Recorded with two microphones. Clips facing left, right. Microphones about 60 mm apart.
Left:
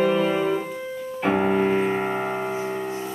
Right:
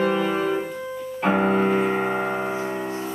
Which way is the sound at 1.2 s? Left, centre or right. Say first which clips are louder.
Right 1 dB; centre.